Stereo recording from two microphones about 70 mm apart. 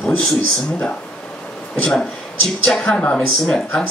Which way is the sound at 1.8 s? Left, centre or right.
Centre.